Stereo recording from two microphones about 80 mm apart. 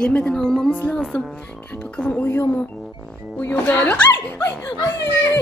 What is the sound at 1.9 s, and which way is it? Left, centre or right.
Speech, centre.